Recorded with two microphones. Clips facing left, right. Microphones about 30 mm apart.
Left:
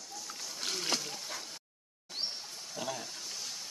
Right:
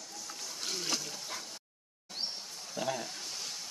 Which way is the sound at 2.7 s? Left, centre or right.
Centre.